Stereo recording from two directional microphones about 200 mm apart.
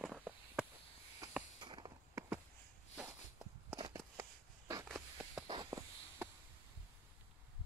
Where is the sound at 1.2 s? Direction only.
15° right (ahead or behind).